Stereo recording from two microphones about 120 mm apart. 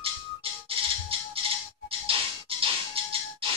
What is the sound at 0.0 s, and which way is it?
Music, 50° right (ahead or behind).